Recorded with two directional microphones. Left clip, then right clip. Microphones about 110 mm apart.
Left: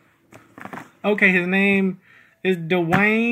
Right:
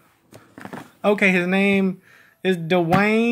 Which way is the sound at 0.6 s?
65° right (ahead or behind).